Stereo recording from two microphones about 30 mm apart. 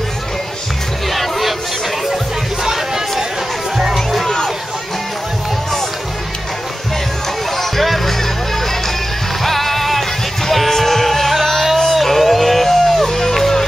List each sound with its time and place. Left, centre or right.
1.1 s music: centre
2.6 s a sound: centre
3.7 s music: centre
7.5 s music: centre
9.4 s music: centre
13.0 s music: centre